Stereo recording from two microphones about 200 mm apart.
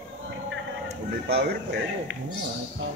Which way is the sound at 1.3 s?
55° right (ahead or behind).